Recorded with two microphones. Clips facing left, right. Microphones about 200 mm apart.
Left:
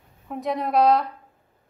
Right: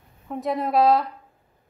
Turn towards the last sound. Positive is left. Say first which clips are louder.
# even
turn(degrees=0)  # may be behind; listen again after turning